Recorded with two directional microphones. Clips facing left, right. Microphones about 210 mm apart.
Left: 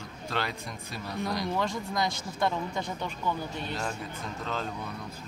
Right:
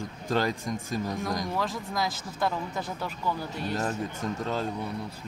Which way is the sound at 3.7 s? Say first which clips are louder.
Right 7 dB; 40° right (ahead or behind).